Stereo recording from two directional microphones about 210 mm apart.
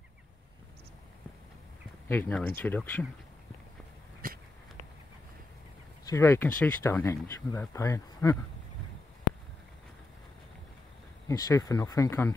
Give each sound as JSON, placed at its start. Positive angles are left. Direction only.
{"t": 2.0, "sound": "speech", "side_deg": 10}
{"t": 4.2, "sound": "a sound", "side_deg": -40}
{"t": 6.0, "sound": "speech", "side_deg": 15}
{"t": 11.2, "sound": "speech", "side_deg": 15}